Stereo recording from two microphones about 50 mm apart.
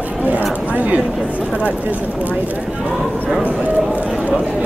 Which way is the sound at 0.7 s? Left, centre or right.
Right.